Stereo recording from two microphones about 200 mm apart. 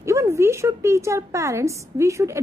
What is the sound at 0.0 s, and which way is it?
A woman's voice, 15° right (ahead or behind).